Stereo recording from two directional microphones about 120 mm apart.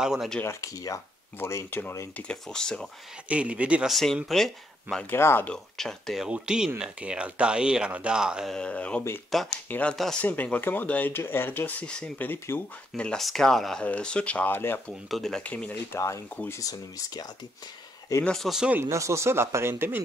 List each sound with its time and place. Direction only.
0.0 s speech: 5° right (ahead or behind)
0.4 s speech: 25° left (ahead or behind)
2.2 s speech: 5° left (ahead or behind)
3.3 s speech: 10° right (ahead or behind)
3.9 s speech: centre (ahead or behind)
5.1 s speech: 20° left (ahead or behind)
5.5 s speech: 5° left (ahead or behind)
8.5 s speech: 10° left (ahead or behind)
9.7 s speech: 10° left (ahead or behind)
15.0 s speech: centre (ahead or behind); by 17.3 s 30° left (ahead or behind)
18.2 s speech: 5° left (ahead or behind)
18.8 s speech: 25° right (ahead or behind)